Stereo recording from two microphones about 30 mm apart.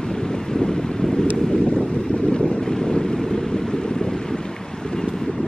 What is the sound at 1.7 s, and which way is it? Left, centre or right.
Boat, left.